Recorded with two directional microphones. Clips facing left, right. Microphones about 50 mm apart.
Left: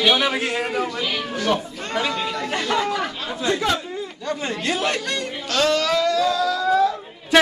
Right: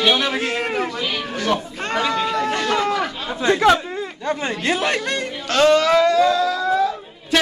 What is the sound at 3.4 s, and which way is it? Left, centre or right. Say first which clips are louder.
Chatter: right 4 dB; right.